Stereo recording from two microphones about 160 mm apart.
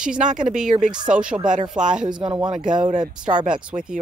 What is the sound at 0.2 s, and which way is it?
Speech, 50° right (ahead or behind).